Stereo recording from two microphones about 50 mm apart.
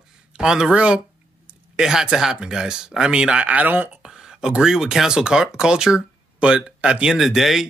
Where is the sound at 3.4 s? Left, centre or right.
Right.